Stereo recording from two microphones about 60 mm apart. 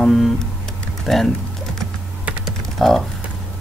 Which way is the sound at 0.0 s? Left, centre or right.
Centre.